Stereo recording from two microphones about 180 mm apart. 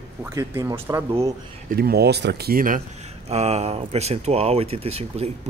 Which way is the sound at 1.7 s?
60° right (ahead or behind).